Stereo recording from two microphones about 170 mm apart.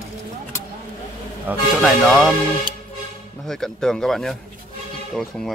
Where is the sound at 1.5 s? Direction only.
10° right (ahead or behind).